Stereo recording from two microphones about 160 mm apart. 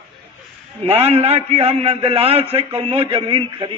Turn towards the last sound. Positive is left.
turn(degrees=-30)  # may be behind; listen again after turning